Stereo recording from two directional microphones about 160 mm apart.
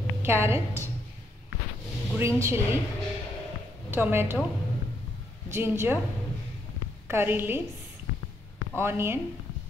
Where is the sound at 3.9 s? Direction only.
15° right (ahead or behind).